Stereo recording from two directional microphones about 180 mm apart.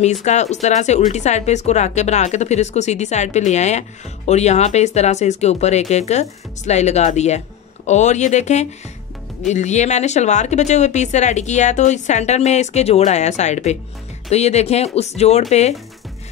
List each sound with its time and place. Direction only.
0.0 s speech: 40° left (ahead or behind)